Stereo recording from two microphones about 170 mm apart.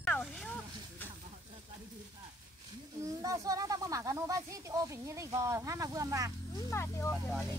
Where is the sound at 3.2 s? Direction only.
20° right (ahead or behind).